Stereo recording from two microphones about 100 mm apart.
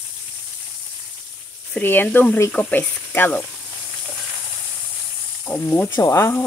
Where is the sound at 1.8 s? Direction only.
20° left (ahead or behind).